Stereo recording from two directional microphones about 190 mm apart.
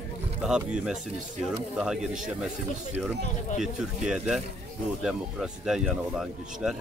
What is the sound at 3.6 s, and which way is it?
Speech, centre (ahead or behind).